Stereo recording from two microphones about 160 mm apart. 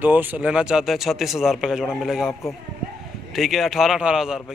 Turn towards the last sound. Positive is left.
turn(degrees=-5)  # may be behind; listen again after turning